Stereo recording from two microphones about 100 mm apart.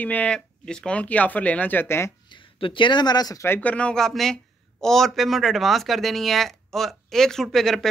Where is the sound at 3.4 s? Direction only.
20° left (ahead or behind).